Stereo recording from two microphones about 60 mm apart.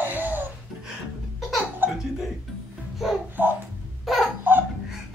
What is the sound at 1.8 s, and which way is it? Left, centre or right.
Laughter, right.